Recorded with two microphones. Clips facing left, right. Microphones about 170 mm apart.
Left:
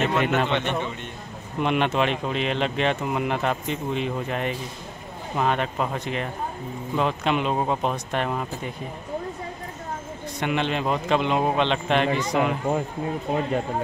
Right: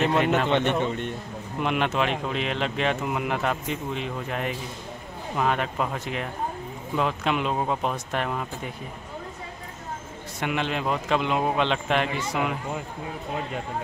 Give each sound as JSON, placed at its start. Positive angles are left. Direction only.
{"t": 0.0, "sound": "speech", "side_deg": 0}
{"t": 0.5, "sound": "a man's voice", "side_deg": -45}
{"t": 1.6, "sound": "speech", "side_deg": 0}
{"t": 10.4, "sound": "speech", "side_deg": -5}